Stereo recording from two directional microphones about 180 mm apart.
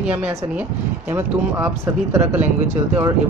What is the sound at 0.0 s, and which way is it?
Speech, 5° right (ahead or behind).